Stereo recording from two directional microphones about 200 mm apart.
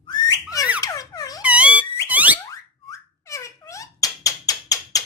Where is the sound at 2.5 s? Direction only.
15° left (ahead or behind).